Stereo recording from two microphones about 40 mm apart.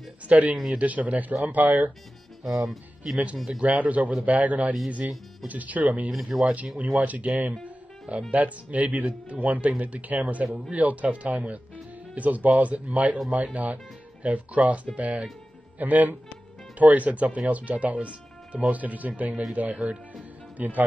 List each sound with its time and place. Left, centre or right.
0.3 s speech: right
3.0 s speech: right
6.0 s speech: centre
6.4 s speech: right
15.8 s speech: right